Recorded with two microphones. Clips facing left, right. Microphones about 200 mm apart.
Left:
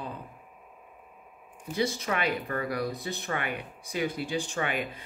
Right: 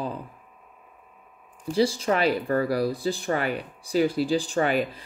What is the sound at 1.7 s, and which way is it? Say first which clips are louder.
Speech: right 7 dB; 30° right (ahead or behind).